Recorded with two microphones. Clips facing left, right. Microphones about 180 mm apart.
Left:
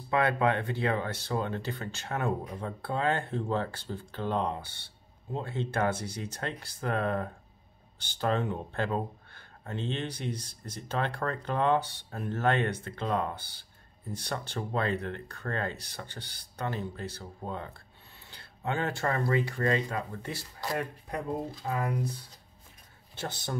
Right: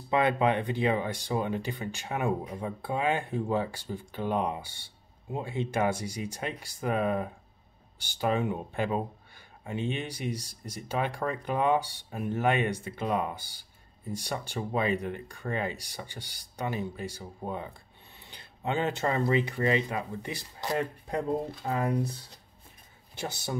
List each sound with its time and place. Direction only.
0.1 s speech: 20° right (ahead or behind)
23.1 s speech: 10° right (ahead or behind)